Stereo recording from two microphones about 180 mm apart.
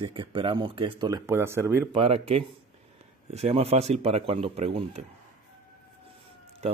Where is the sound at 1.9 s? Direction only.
30° right (ahead or behind).